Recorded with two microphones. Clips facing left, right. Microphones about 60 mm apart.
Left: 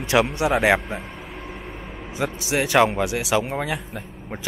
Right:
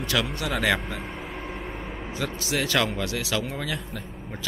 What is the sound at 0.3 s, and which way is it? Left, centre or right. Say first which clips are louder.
Speech: left 7 dB; centre.